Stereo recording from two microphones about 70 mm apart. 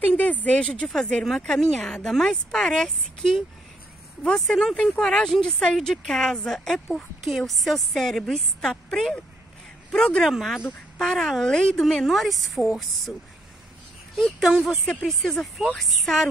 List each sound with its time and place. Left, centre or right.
0.0 s a woman's voice: left
10.2 s a woman's voice: centre
12.0 s a woman's voice: centre
14.1 s a woman's voice: centre